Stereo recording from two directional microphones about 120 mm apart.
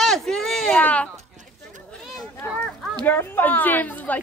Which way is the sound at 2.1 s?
Centre (ahead or behind).